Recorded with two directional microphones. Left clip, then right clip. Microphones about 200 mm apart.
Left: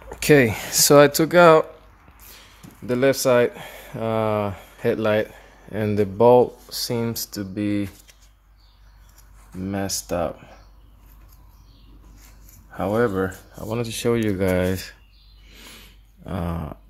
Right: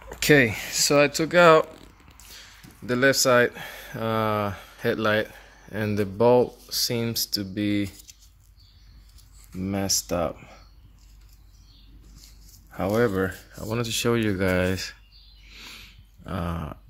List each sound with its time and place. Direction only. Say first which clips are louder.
0.1 s a sound: left 2 dB; 10° left (ahead or behind)
0.5 s speech: left 6 dB; 25° left (ahead or behind)
2.3 s speech: right 1 dB; centre (ahead or behind)
9.6 s speech: right 1 dB; 10° right (ahead or behind)
12.7 s speech: left 2 dB; 10° right (ahead or behind)
13.6 s speech: even; centre (ahead or behind)
15.5 s a sound: right 1 dB; 10° left (ahead or behind)